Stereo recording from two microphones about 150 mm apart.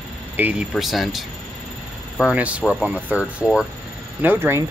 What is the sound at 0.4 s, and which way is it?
Speech, 5° right (ahead or behind).